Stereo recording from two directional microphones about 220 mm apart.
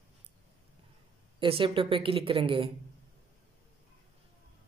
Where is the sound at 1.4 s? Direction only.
25° right (ahead or behind).